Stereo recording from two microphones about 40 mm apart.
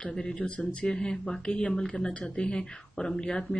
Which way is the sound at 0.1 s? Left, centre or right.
Centre.